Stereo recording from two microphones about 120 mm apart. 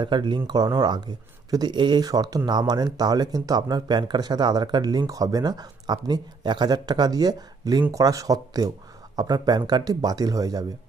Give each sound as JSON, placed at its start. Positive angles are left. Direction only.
{"t": 0.0, "sound": "speech", "side_deg": -40}